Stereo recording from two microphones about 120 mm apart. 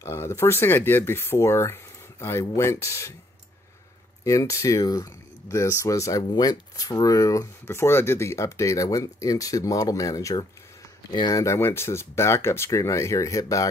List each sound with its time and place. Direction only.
0.0 s speech: 25° left (ahead or behind)
4.2 s speech: 25° left (ahead or behind)